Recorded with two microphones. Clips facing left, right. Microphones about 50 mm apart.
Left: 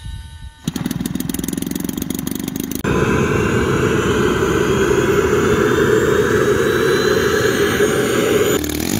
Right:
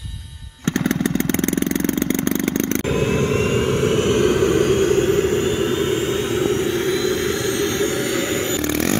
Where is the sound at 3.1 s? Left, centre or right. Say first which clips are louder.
Left 2 dB; left.